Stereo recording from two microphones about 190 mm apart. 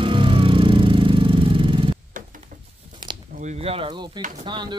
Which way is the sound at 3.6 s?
30° right (ahead or behind).